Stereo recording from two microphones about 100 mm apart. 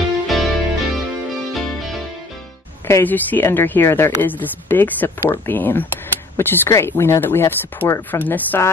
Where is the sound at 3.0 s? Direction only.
20° left (ahead or behind).